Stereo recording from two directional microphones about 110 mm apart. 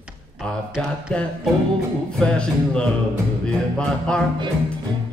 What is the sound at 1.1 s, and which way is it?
Music, 10° left (ahead or behind).